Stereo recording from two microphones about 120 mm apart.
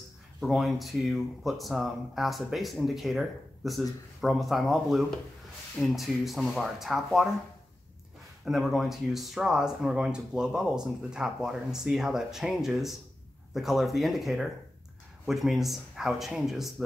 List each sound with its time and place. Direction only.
0.4 s speech: centre (ahead or behind)
8.5 s speech: centre (ahead or behind)